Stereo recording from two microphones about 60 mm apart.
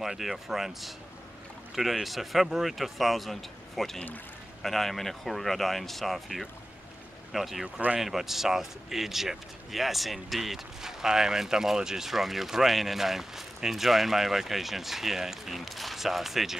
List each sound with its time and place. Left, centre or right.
0.0 s speech: centre
7.6 s speech: right
8.0 s speech: centre